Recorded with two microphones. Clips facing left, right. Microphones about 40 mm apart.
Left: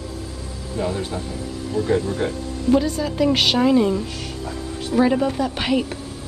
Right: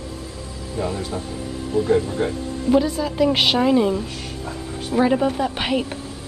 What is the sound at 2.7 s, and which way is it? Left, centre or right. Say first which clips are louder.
Speech: right 1 dB; centre.